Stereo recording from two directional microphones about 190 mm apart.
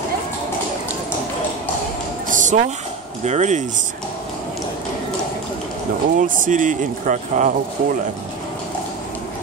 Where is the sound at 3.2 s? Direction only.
35° right (ahead or behind).